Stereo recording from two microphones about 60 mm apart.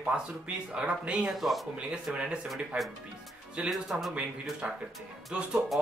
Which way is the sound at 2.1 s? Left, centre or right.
Right.